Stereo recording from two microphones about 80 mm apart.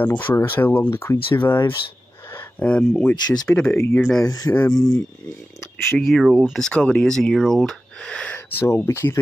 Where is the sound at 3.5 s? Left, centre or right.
Left.